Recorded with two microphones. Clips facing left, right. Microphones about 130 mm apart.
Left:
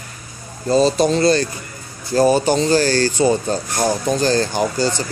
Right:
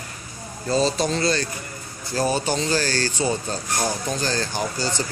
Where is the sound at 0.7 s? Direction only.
15° left (ahead or behind).